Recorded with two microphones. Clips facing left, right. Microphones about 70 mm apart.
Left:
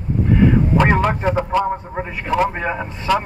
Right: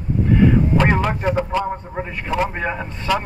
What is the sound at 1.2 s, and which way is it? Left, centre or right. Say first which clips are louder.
A man's voice: left 2 dB; centre.